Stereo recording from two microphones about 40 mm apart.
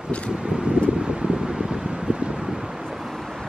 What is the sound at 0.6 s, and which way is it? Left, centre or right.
Wind, right.